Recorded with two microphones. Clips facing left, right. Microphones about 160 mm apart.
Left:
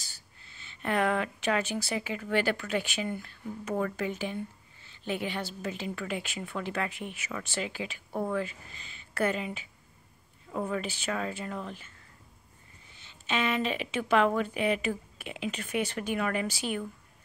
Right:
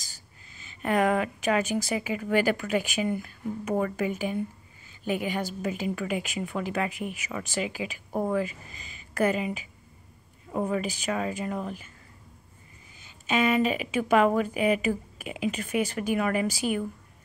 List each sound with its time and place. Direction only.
0.4 s a woman's voice: 5° right (ahead or behind)
13.3 s a woman's voice: 10° right (ahead or behind)